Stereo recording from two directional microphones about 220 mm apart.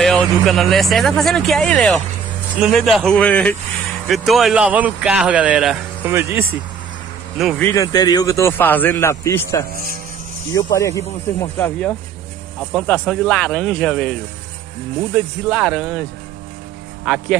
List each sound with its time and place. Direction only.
0.0 s a man's voice: centre (ahead or behind)
7.6 s a man's voice: 15° left (ahead or behind)
9.7 s speech: 40° right (ahead or behind)
10.5 s a man's voice: 15° left (ahead or behind)
15.1 s a man's voice: centre (ahead or behind)
17.0 s a man's voice: centre (ahead or behind)